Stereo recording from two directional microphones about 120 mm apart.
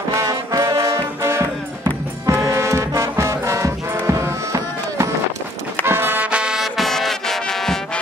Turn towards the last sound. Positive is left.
turn(degrees=5)  # may be behind; listen again after turning